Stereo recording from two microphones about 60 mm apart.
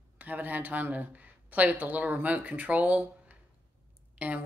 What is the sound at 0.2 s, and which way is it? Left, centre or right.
Speech, right.